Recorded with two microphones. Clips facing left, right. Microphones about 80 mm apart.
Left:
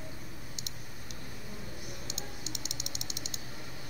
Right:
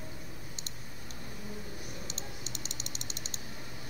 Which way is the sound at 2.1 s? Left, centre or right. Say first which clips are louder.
Left 1 dB; right.